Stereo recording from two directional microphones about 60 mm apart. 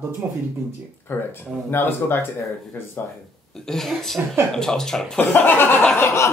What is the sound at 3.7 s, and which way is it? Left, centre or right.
Speech, centre.